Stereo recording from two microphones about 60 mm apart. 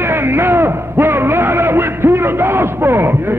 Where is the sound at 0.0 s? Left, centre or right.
Right.